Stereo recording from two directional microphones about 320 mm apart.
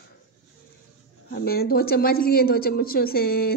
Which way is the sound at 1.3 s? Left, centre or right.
Left.